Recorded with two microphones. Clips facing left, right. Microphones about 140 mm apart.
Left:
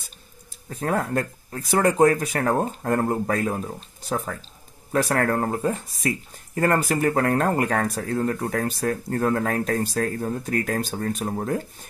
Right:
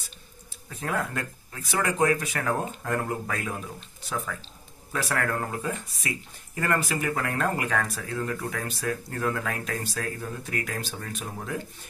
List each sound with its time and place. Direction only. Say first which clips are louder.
0.7 s speech: left 5 dB; 40° left (ahead or behind)